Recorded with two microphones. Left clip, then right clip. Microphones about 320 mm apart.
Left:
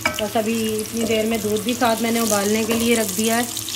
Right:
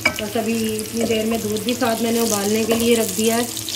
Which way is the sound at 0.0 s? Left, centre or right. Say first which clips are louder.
Even; centre.